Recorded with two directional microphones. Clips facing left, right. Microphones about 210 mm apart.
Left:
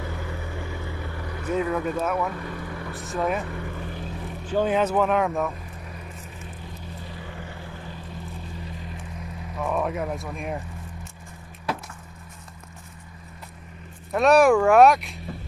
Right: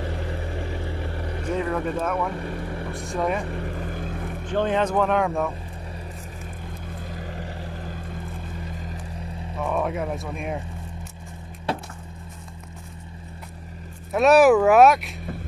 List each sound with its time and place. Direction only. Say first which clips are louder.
0.0 s vehicle: right 3 dB; 35° right (ahead or behind)
1.5 s speech: left 1 dB; 5° left (ahead or behind)
2.3 s speech: right 3 dB; 30° right (ahead or behind)
2.9 s speech: right 1 dB; centre (ahead or behind)
3.4 s vehicle: right 3 dB; 35° right (ahead or behind); by 4.5 s 55° right (ahead or behind)
4.5 s speech: even; 5° left (ahead or behind)
6.9 s vehicle: right 4 dB; 50° right (ahead or behind)
9.6 s speech: right 1 dB; centre (ahead or behind)
14.1 s speech: right 2 dB; 5° right (ahead or behind)